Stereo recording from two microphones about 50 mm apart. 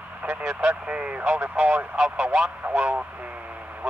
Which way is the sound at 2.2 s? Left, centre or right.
Centre.